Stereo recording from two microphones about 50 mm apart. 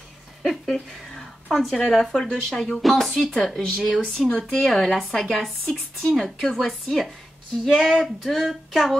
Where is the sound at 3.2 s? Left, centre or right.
Centre.